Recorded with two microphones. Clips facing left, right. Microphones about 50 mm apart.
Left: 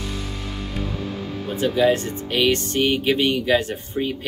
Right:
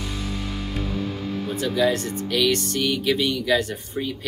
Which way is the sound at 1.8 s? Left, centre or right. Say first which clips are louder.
Left 3 dB; left.